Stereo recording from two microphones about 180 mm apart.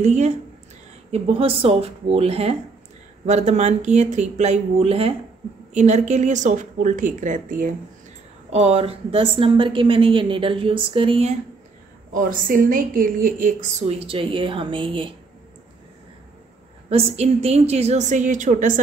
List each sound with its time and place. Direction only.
0.0 s a woman's voice: 40° right (ahead or behind)
8.5 s a woman's voice: 35° right (ahead or behind)
12.1 s a woman's voice: 50° right (ahead or behind); by 15.1 s 30° right (ahead or behind)
16.9 s a woman's voice: 35° right (ahead or behind)